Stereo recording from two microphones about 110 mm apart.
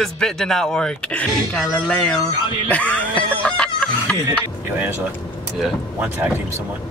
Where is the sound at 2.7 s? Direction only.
10° left (ahead or behind).